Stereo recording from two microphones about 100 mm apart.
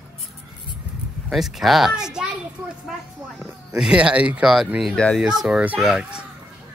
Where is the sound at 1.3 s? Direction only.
Centre (ahead or behind).